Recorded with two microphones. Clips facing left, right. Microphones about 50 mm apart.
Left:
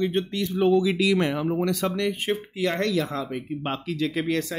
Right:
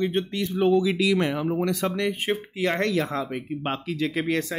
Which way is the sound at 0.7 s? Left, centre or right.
Centre.